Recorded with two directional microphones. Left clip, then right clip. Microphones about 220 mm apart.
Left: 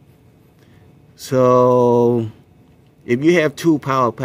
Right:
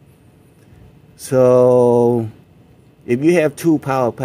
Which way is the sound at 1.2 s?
10° left (ahead or behind).